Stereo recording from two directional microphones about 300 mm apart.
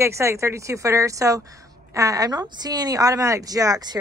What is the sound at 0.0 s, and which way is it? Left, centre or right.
Speech, centre.